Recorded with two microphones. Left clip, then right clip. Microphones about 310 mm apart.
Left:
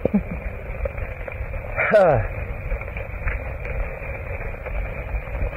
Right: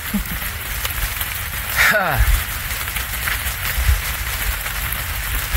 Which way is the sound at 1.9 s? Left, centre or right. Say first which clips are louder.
Left 4 dB; right.